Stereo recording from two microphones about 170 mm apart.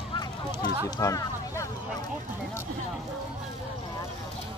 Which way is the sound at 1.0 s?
20° left (ahead or behind).